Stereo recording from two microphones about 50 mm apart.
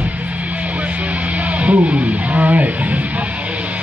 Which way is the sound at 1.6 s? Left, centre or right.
Right.